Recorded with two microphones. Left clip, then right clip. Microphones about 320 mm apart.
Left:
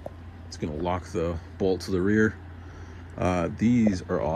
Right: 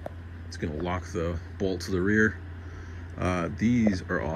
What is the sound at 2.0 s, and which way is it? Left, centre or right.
Speech, left.